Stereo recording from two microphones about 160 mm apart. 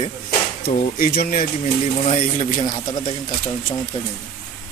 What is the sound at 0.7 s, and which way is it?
Speech, 60° left (ahead or behind).